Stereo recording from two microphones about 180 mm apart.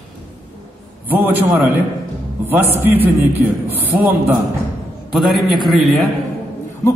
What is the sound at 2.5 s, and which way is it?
A man's voice, 10° right (ahead or behind).